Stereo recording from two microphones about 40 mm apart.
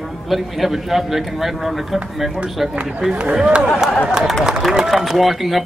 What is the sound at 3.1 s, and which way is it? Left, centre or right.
Speech, right.